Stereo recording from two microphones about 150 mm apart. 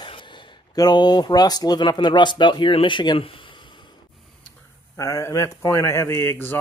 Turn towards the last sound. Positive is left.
turn(degrees=15)  # may be behind; listen again after turning